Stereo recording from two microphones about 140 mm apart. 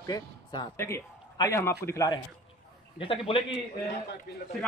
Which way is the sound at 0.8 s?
15° left (ahead or behind).